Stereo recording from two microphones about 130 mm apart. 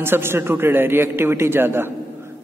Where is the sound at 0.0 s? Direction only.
20° right (ahead or behind).